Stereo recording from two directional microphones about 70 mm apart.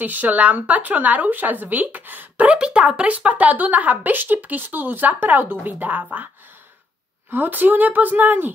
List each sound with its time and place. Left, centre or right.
0.0 s speech: right
7.2 s speech: right